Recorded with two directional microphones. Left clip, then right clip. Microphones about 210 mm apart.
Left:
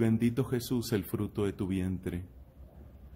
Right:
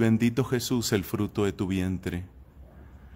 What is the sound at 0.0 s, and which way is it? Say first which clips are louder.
Speech: right 5 dB; 20° right (ahead or behind).